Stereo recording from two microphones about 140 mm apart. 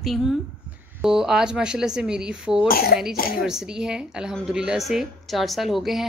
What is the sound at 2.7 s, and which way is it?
Speech, 90° left.